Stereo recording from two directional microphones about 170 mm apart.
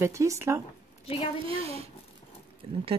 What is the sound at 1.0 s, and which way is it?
Speech, 35° left (ahead or behind).